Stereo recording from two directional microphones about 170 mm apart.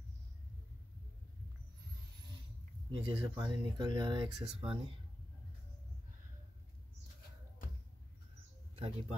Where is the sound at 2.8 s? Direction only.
25° right (ahead or behind).